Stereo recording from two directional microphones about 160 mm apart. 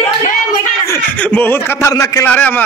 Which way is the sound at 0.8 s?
15° left (ahead or behind).